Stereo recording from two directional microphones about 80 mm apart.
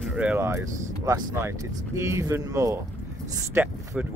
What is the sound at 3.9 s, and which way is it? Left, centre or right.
Speech, centre.